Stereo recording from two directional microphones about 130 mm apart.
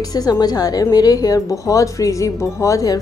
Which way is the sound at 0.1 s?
30° left (ahead or behind).